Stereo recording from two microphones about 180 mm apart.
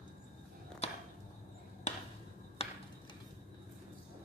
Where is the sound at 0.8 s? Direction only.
35° left (ahead or behind).